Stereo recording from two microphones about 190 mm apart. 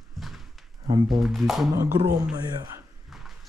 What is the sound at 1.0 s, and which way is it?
Speech, centre (ahead or behind).